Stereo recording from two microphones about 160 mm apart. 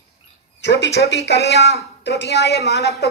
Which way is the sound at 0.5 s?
90° left.